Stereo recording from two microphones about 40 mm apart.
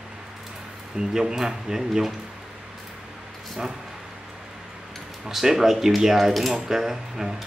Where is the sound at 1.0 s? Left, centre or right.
Centre.